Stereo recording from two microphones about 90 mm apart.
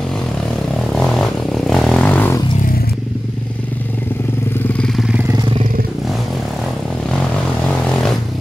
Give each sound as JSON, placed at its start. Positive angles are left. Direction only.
{"t": 0.9, "sound": "vehicle", "side_deg": 5}